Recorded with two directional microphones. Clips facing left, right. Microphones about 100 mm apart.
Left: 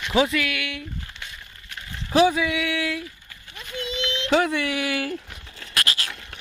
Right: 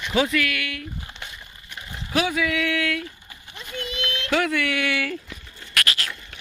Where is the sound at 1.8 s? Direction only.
15° right (ahead or behind).